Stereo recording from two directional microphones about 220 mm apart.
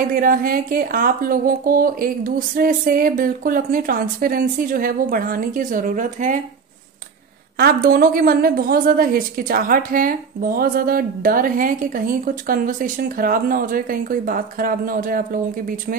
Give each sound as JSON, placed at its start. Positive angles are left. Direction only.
{"t": 0.1, "sound": "a woman's voice", "side_deg": -40}
{"t": 7.5, "sound": "a woman's voice", "side_deg": -45}